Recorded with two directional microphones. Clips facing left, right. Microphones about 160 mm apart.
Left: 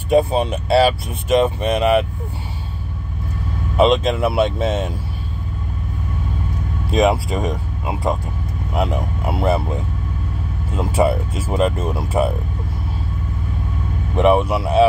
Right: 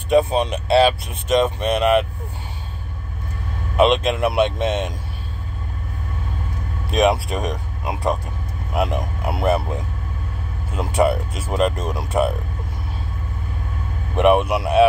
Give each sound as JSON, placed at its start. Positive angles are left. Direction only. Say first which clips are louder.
{"t": 0.2, "sound": "speech", "louder": "left 1 dB", "side_deg": 0}
{"t": 3.7, "sound": "speech", "louder": "left 1 dB", "side_deg": 0}
{"t": 6.9, "sound": "speech", "louder": "left 1 dB", "side_deg": 5}
{"t": 10.8, "sound": "speech", "louder": "left 1 dB", "side_deg": 5}
{"t": 14.1, "sound": "speech", "louder": "left 1 dB", "side_deg": -5}